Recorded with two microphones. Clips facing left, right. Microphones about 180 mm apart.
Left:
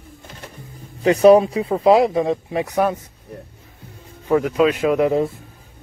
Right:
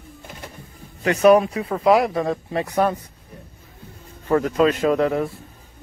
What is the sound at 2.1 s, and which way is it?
Speech, 15° left (ahead or behind).